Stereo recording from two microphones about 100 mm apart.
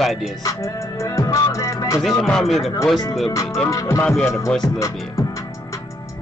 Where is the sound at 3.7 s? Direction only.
30° left (ahead or behind).